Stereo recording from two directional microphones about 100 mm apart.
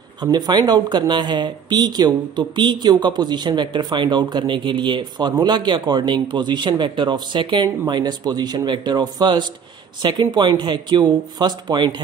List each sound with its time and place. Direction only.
0.2 s speech: 45° right (ahead or behind)